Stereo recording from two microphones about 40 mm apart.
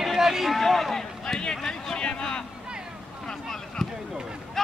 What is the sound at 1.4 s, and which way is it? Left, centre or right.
Run, centre.